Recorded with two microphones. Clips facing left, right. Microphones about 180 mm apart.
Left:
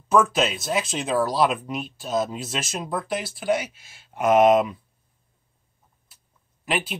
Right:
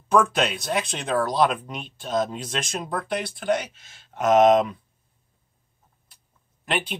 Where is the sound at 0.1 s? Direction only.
5° left (ahead or behind).